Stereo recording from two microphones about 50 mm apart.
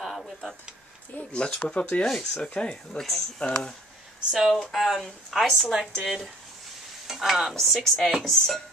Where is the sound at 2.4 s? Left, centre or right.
Left.